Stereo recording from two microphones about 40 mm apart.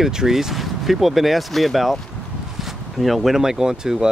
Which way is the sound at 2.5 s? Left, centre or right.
Centre.